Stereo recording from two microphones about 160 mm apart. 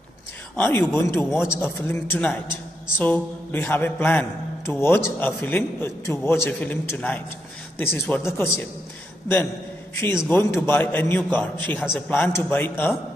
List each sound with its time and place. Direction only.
0.6 s a man's voice: 15° left (ahead or behind)
1.3 s a man's voice: 5° right (ahead or behind)
1.6 s a man's voice: 10° left (ahead or behind)
8.3 s a man's voice: centre (ahead or behind)
10.3 s a man's voice: 15° left (ahead or behind)